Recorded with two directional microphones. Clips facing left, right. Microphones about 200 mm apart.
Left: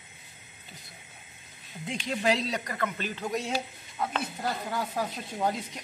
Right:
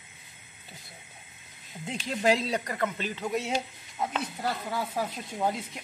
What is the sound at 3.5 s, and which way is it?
Speech, 15° right (ahead or behind).